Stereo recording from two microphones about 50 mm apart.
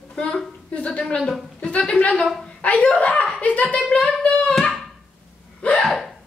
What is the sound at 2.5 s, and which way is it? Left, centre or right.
A woman's voice, left.